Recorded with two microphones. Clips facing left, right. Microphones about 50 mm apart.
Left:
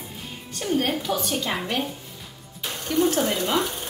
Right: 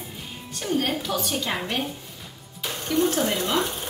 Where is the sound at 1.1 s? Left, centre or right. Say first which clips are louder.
Left 1 dB; centre.